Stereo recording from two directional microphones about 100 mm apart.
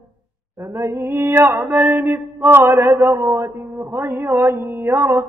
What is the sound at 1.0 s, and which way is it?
Mantra, 20° right (ahead or behind).